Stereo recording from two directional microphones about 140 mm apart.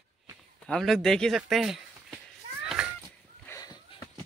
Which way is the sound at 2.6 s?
5° right (ahead or behind).